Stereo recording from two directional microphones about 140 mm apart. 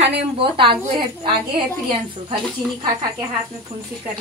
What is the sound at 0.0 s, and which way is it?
A woman's voice, 40° right (ahead or behind).